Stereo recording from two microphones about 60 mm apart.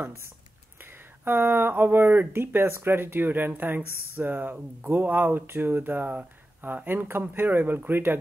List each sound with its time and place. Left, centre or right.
1.2 s speech: right
3.8 s speech: left
4.2 s speech: right